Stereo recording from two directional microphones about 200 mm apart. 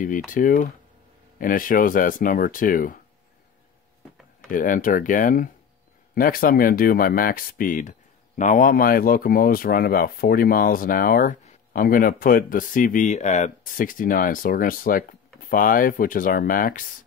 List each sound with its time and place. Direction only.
0.3 s speech: 40° left (ahead or behind)
4.5 s speech: 40° left (ahead or behind)